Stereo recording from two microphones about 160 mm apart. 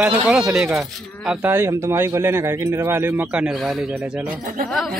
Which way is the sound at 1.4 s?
15° right (ahead or behind).